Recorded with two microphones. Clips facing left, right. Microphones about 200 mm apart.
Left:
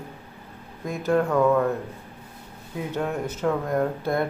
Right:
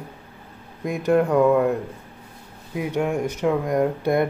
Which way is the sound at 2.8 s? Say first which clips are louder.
Right 4 dB; 10° right (ahead or behind).